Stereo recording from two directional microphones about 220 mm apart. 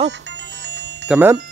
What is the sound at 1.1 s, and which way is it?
Speech, 10° right (ahead or behind).